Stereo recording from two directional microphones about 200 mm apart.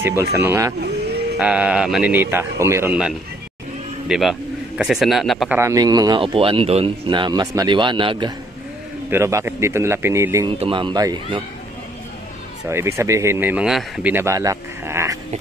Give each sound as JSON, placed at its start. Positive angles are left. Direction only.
{"t": 0.0, "sound": "a man's voice", "side_deg": -15}
{"t": 5.6, "sound": "speech", "side_deg": -15}
{"t": 9.1, "sound": "speech", "side_deg": -15}
{"t": 10.6, "sound": "speech", "side_deg": -25}
{"t": 12.6, "sound": "speech", "side_deg": -15}